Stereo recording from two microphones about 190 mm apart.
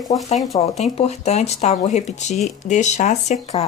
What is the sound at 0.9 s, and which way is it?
Speech, 35° left (ahead or behind).